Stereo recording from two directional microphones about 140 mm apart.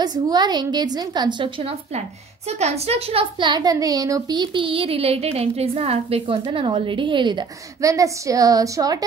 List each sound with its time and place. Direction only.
0.0 s a woman's voice: 30° right (ahead or behind)